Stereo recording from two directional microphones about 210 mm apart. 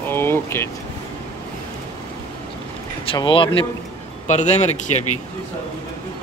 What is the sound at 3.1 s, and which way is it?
Speech, 25° left (ahead or behind).